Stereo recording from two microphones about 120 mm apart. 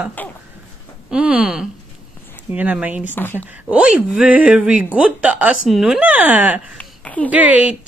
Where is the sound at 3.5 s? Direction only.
10° right (ahead or behind).